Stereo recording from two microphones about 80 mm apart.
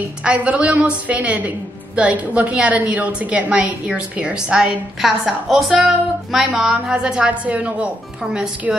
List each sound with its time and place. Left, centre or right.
0.2 s a woman's voice: centre